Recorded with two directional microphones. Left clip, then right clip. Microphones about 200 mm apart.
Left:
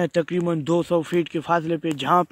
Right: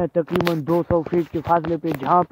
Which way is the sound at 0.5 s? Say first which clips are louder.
Left 1 dB; 30° left (ahead or behind).